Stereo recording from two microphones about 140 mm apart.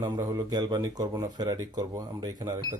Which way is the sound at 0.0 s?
25° right (ahead or behind).